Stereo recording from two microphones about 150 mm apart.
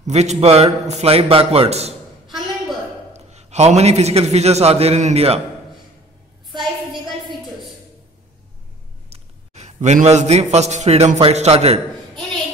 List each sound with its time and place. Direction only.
0.0 s a man's voice: 50° right (ahead or behind)
3.1 s a man's voice: 45° right (ahead or behind)
9.1 s a man's voice: 45° right (ahead or behind)